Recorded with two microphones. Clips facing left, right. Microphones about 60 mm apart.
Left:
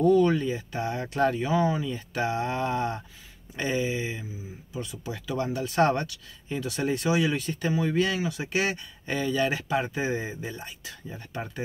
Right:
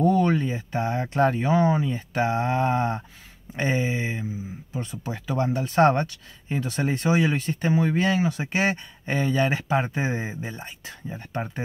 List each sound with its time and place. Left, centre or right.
0.0 s speech: right